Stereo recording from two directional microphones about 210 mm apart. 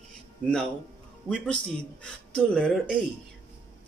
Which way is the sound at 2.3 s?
5° left (ahead or behind).